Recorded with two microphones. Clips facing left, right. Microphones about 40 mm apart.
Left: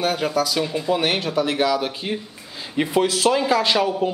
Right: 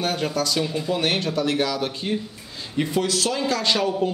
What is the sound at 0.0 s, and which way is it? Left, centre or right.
A man's voice, centre.